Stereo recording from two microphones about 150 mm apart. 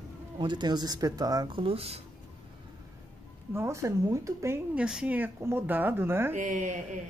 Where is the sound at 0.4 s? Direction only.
30° right (ahead or behind).